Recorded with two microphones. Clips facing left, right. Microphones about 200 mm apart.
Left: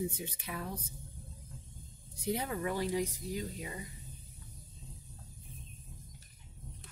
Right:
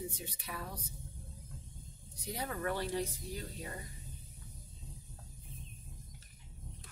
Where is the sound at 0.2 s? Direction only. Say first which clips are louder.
Left 3 dB; 20° left (ahead or behind).